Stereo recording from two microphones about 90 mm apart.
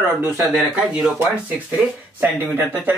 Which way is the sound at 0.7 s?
10° right (ahead or behind).